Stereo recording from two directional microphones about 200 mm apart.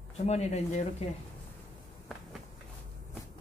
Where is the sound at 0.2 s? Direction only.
35° left (ahead or behind).